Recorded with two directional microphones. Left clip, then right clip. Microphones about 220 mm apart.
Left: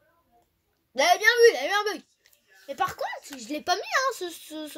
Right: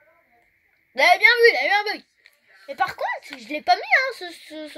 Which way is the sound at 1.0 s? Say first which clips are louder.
Right 4 dB; 50° left (ahead or behind).